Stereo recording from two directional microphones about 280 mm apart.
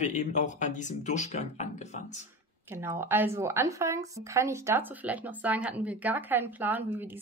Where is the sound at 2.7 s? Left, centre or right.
Centre.